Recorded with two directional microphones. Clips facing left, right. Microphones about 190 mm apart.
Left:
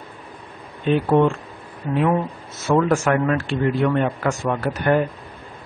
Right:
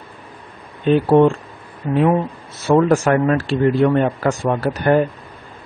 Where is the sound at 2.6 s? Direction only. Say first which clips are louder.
Right 4 dB; 35° right (ahead or behind).